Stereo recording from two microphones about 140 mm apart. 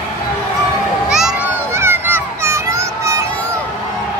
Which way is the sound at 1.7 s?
15° right (ahead or behind).